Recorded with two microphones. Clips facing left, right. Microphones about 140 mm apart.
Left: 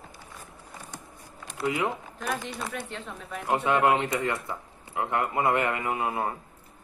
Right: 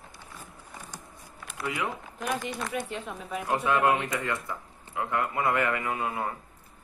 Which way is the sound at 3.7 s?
25° left (ahead or behind).